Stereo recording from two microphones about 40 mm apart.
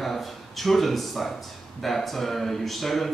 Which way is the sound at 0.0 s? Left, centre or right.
Centre.